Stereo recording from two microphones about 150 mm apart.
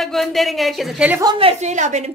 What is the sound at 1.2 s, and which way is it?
Speech, 35° right (ahead or behind).